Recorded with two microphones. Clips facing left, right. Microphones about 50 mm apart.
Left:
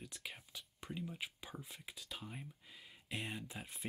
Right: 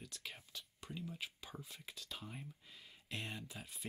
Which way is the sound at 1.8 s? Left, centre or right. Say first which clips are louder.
Left 1 dB; centre.